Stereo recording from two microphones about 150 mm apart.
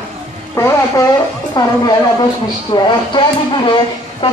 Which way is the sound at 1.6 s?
25° left (ahead or behind).